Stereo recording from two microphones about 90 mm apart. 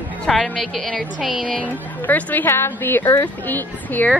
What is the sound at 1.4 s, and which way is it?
A woman's voice, 10° left (ahead or behind).